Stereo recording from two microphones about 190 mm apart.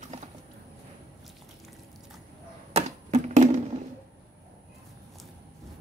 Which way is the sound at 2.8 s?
35° right (ahead or behind).